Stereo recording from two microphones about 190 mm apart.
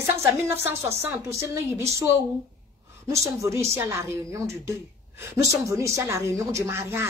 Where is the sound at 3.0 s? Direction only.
15° right (ahead or behind).